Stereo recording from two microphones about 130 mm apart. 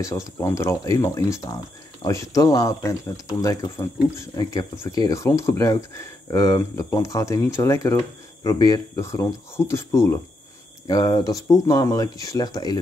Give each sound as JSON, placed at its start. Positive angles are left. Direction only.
{"t": 0.0, "sound": "speech", "side_deg": 25}